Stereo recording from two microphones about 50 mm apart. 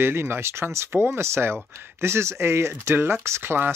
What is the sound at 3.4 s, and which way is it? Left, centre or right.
Speech, right.